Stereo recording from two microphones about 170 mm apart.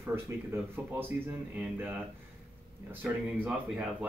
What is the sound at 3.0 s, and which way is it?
Speech, 5° right (ahead or behind).